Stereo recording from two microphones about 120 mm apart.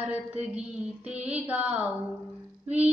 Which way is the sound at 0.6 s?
10° right (ahead or behind).